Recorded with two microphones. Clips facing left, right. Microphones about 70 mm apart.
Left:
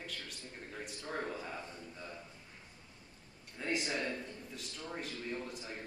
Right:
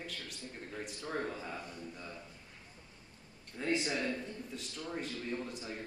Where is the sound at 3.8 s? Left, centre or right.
Centre.